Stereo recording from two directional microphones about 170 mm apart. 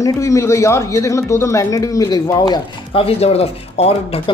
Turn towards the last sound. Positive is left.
turn(degrees=35)  # may be behind; listen again after turning